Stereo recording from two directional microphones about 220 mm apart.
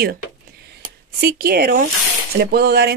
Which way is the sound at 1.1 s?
45° right (ahead or behind).